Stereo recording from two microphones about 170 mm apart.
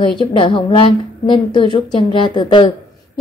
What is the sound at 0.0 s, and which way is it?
A woman's voice, 30° left (ahead or behind).